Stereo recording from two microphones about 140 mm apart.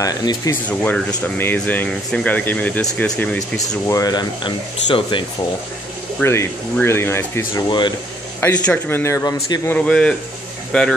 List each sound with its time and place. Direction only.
0.0 s speech: 30° left (ahead or behind)
0.5 s speech: 10° left (ahead or behind)
3.8 s speech: 25° left (ahead or behind)
6.2 s speech: 20° left (ahead or behind)
9.8 s speech: 5° left (ahead or behind)